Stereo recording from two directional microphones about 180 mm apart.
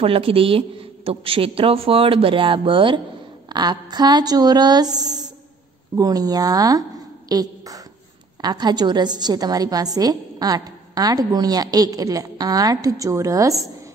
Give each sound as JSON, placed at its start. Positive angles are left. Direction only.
{"t": 0.0, "sound": "a woman's voice", "side_deg": -30}